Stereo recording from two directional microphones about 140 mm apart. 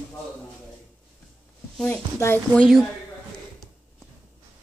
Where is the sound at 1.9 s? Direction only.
20° left (ahead or behind).